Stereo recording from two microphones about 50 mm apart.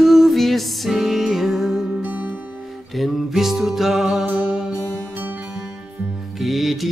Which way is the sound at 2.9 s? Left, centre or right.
Centre.